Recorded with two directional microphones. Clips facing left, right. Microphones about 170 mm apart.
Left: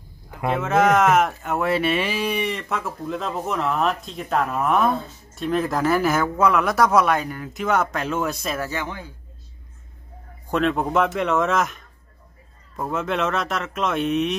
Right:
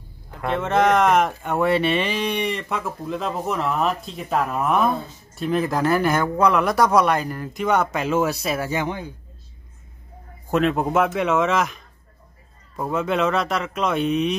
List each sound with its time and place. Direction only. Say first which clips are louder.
0.3 s speech: left 1 dB; 5° left (ahead or behind); by 9.1 s 20° right (ahead or behind)
10.5 s speech: right 1 dB; 5° right (ahead or behind)